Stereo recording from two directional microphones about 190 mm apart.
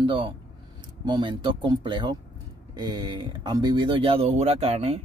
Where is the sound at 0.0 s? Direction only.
25° right (ahead or behind).